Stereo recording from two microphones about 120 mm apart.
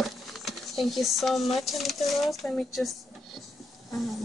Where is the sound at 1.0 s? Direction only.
Centre (ahead or behind).